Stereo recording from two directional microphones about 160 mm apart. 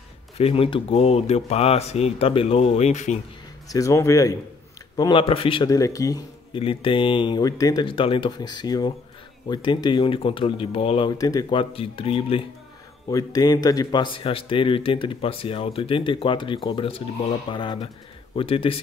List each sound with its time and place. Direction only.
0.4 s speech: 35° left (ahead or behind)
3.6 s speech: 20° left (ahead or behind)
5.7 s speech: 20° left (ahead or behind)
6.6 s speech: 35° left (ahead or behind)
11.7 s speech: 35° left (ahead or behind)